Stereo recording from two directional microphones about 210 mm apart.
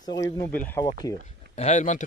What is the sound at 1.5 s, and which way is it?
Speech, 35° left (ahead or behind).